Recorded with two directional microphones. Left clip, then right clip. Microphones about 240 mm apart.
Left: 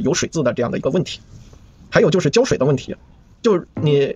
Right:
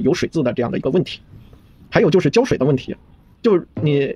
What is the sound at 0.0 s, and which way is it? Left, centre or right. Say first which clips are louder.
Speech: even; centre.